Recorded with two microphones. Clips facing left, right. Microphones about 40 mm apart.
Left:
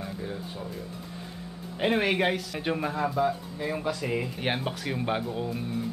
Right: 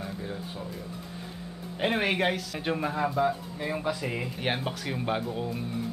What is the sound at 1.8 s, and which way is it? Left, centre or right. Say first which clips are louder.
Speech: left 2 dB; centre.